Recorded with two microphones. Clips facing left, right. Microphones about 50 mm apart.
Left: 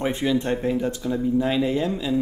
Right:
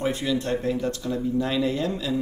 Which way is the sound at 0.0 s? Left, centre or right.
Left.